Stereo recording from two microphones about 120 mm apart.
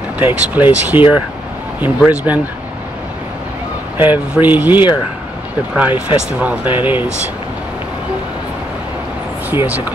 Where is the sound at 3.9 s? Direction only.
15° right (ahead or behind).